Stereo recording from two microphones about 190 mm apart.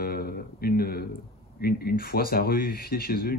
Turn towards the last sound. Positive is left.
turn(degrees=55)  # may be behind; listen again after turning